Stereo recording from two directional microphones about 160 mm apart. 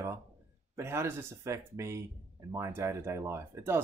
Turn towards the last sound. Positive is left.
turn(degrees=-15)  # may be behind; listen again after turning